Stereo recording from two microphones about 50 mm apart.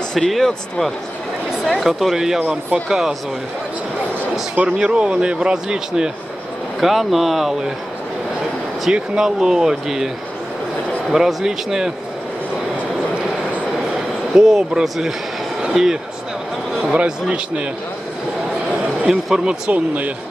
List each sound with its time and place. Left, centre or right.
0.3 s speech: centre
1.7 s speech: centre
4.6 s speech: centre
6.8 s speech: centre
8.9 s speech: centre
14.3 s speech: centre
16.8 s a man's voice: right
19.0 s speech: centre
19.7 s speech: right